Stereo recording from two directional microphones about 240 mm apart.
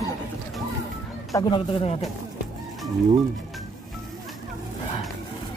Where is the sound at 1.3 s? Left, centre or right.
Left.